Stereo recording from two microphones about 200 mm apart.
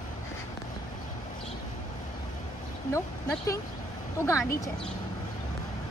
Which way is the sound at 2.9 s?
15° left (ahead or behind).